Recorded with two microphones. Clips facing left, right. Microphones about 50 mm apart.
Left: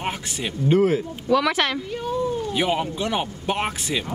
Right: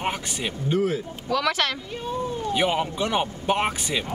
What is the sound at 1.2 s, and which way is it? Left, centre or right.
Speech, centre.